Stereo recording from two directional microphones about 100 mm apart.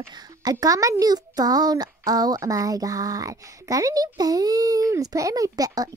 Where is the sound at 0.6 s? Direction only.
35° right (ahead or behind).